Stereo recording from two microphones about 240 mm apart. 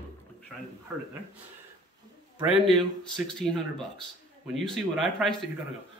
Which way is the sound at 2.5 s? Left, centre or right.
Centre.